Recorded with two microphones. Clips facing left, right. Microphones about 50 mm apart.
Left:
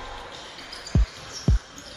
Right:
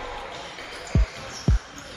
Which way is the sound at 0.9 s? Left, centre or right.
Right.